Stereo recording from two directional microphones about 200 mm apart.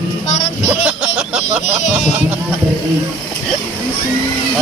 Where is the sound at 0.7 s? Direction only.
5° right (ahead or behind).